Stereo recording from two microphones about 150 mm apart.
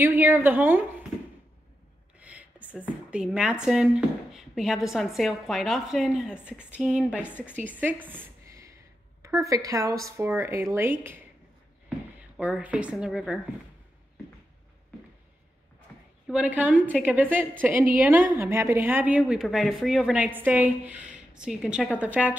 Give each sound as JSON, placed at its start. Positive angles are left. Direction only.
{"t": 0.0, "sound": "a woman's voice", "side_deg": -15}
{"t": 2.1, "sound": "a sound", "side_deg": -10}
{"t": 2.8, "sound": "a woman's voice", "side_deg": -5}
{"t": 12.4, "sound": "a woman's voice", "side_deg": -10}
{"t": 16.3, "sound": "a woman's voice", "side_deg": -10}